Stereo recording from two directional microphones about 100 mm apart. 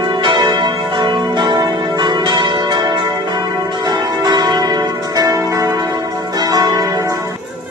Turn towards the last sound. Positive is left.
turn(degrees=-35)  # may be behind; listen again after turning